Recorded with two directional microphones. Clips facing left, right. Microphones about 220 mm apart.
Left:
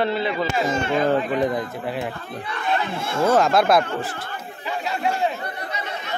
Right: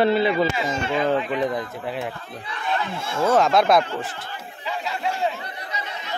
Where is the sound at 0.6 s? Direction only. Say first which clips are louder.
Left 3 dB; 45° left (ahead or behind).